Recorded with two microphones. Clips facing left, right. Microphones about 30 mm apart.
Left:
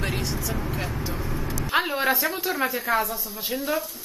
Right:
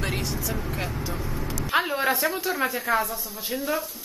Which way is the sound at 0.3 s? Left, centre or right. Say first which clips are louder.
Left 1 dB; centre.